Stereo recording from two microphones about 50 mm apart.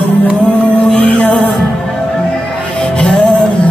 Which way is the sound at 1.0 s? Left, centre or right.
Left.